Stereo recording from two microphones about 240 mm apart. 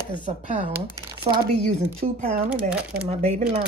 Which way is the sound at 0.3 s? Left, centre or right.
Right.